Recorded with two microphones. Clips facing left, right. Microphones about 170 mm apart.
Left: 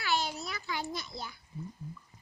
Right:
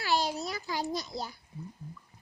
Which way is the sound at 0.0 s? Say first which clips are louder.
Right 3 dB; 35° right (ahead or behind).